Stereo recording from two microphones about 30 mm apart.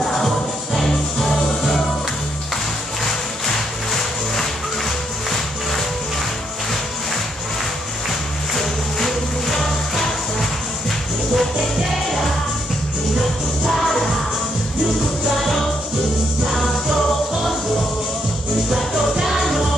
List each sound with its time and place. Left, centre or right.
0.0 s music: centre
8.5 s music: centre
11.3 s music: centre
18.9 s music: centre
19.3 s music: centre